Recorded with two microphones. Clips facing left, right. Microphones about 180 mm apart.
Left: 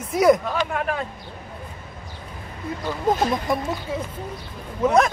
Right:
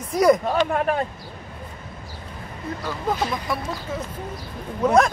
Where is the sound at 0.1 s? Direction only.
Centre (ahead or behind).